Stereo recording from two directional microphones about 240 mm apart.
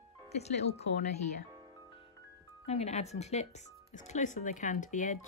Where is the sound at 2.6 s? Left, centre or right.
Left.